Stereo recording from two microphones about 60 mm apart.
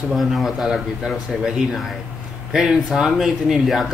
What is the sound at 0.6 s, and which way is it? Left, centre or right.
Speech, centre.